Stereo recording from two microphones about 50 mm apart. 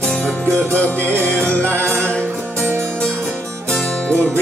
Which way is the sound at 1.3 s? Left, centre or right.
Left.